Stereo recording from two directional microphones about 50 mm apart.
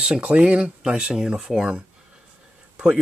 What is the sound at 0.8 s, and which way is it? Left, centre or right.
Speech, centre.